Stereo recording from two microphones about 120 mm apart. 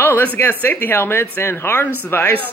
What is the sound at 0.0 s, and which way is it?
A woman's voice, 15° left (ahead or behind).